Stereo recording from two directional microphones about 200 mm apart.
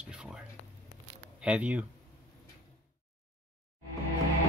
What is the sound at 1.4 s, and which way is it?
Speech, 5° right (ahead or behind).